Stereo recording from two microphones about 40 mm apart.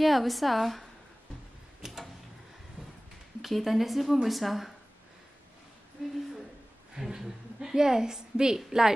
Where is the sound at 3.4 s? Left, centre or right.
Centre.